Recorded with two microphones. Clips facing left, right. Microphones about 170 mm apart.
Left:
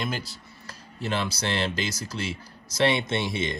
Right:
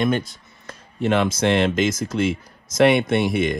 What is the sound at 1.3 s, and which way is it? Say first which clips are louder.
Speech: right 10 dB; 35° left (ahead or behind).